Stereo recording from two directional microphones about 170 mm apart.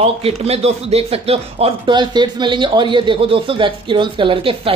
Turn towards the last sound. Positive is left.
turn(degrees=-30)  # may be behind; listen again after turning